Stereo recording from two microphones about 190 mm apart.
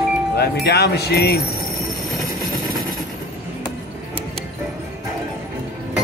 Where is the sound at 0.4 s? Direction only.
60° left (ahead or behind).